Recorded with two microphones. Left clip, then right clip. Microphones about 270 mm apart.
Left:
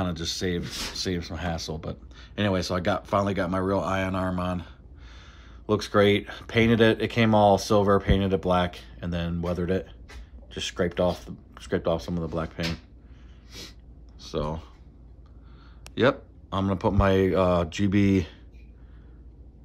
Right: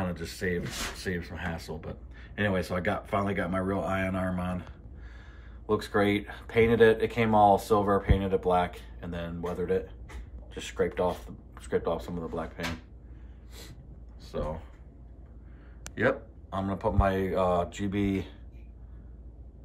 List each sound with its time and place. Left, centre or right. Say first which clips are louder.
0.0 s speech: left 4 dB; left
5.7 s speech: left 5 dB; left
14.3 s speech: left 4 dB; left
15.9 s speech: left 5 dB; left